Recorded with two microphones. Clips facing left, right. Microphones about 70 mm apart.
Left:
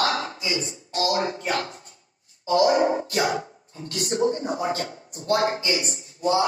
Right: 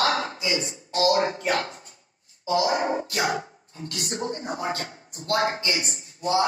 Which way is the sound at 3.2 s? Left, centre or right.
Right.